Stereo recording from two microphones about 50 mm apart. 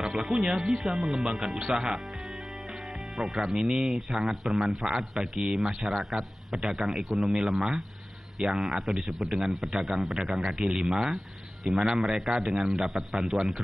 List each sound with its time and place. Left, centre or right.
0.0 s a man's voice: centre
3.2 s a man's voice: centre
11.7 s a man's voice: centre
12.4 s a man's voice: centre